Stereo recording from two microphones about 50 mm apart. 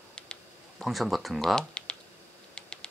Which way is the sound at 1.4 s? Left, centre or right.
Centre.